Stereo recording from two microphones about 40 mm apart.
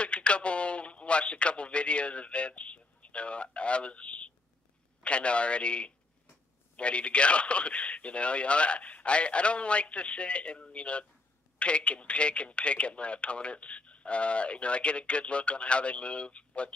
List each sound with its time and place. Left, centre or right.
0.0 s a man's voice: left